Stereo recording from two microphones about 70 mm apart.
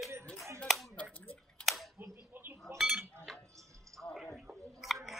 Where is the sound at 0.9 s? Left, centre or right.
Left.